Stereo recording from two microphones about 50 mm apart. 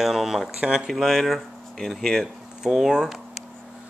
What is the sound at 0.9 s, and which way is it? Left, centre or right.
Speech, centre.